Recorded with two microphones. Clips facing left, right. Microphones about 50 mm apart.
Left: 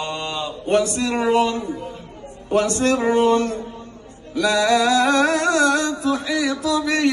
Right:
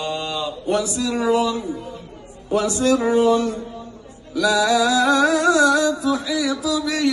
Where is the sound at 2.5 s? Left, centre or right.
Left.